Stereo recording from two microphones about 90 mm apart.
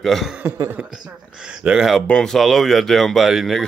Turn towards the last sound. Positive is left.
turn(degrees=0)  # may be behind; listen again after turning